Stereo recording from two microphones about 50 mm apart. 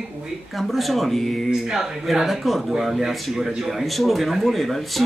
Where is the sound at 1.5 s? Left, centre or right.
Centre.